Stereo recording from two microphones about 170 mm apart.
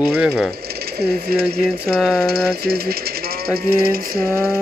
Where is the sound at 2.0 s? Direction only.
Centre (ahead or behind).